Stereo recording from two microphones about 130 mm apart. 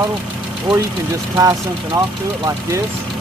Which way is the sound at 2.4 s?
25° right (ahead or behind).